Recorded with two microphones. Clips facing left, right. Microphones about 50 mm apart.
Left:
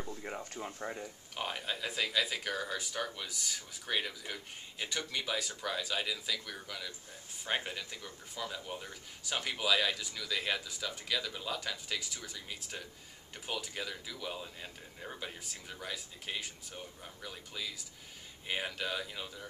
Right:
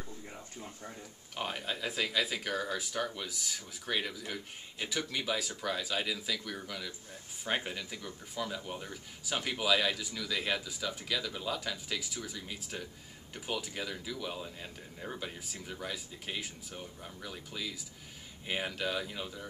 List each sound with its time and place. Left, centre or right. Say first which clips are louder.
0.2 s speech: left 5 dB; left
1.3 s speech: right 2 dB; centre